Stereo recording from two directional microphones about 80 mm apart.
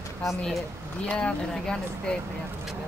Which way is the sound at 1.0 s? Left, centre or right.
Centre.